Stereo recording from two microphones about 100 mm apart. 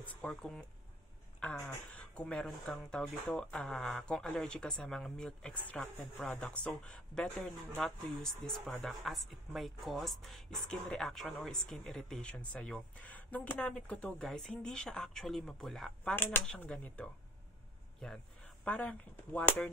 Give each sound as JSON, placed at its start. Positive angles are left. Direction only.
{"t": 0.0, "sound": "a sound", "side_deg": 15}
{"t": 0.3, "sound": "speech", "side_deg": 5}
{"t": 16.0, "sound": "speech", "side_deg": 15}